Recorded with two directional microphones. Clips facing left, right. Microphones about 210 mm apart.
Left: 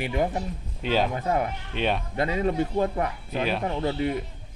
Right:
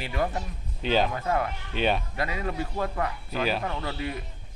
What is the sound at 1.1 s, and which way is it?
Speech, 20° left (ahead or behind).